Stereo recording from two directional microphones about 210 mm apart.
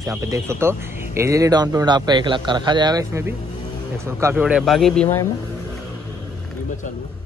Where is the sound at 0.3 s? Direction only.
10° right (ahead or behind); by 5.2 s 5° left (ahead or behind).